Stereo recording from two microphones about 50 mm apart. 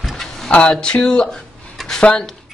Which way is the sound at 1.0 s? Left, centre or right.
Centre.